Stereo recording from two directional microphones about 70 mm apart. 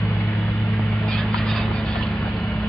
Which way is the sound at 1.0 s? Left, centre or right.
Centre.